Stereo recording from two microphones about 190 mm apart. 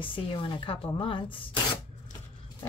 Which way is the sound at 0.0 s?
25° left (ahead or behind).